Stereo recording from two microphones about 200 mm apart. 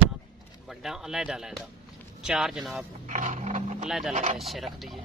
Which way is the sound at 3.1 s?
40° right (ahead or behind).